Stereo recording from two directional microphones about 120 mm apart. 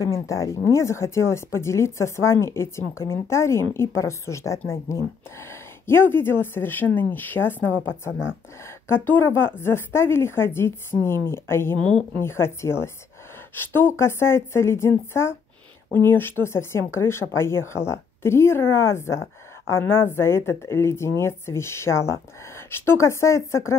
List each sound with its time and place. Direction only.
0.0 s a woman's voice: 30° left (ahead or behind)